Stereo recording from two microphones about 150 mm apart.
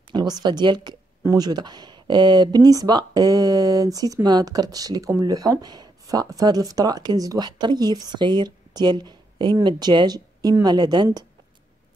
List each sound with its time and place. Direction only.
0.1 s speech: 30° right (ahead or behind)